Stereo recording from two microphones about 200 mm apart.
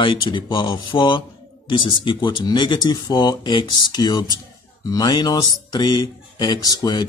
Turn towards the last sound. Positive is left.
turn(degrees=20)  # may be behind; listen again after turning